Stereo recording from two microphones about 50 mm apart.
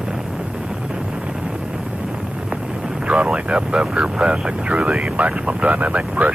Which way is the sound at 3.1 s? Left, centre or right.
Centre.